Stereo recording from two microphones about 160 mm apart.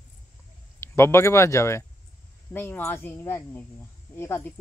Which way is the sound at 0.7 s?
15° left (ahead or behind).